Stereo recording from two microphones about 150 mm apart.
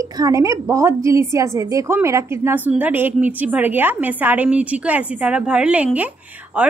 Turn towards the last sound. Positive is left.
turn(degrees=-10)  # may be behind; listen again after turning